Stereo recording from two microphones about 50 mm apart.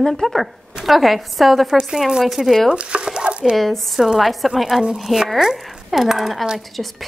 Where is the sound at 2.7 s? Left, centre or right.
Right.